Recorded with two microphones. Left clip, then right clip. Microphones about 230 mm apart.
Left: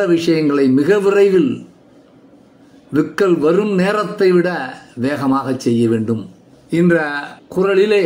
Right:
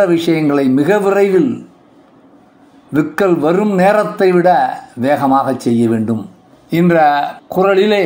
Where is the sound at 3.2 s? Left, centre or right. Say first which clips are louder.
Right 1 dB; right.